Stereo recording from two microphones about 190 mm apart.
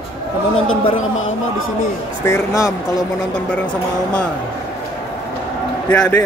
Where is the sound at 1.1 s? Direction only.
90° left.